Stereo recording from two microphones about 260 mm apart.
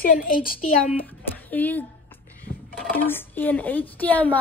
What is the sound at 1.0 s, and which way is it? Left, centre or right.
Speech, centre.